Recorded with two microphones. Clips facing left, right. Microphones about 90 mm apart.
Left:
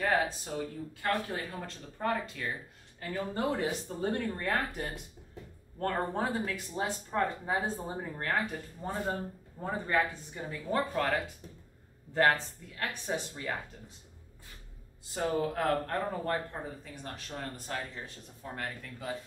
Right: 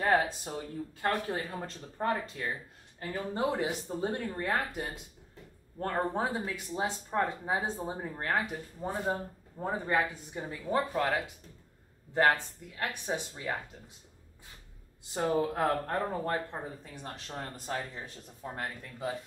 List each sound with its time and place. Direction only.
1.0 s speech: 30° right (ahead or behind)
15.1 s speech: 20° right (ahead or behind)